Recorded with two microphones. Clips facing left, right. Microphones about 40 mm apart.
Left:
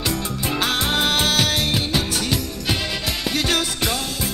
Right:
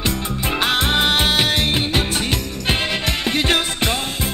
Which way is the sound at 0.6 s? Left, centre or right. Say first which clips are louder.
Right 3 dB; right.